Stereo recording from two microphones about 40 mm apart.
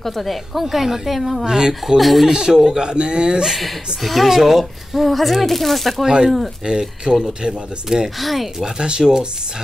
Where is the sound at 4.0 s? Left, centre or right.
Centre.